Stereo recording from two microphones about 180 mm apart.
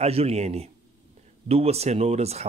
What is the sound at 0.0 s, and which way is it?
Speech, 35° right (ahead or behind).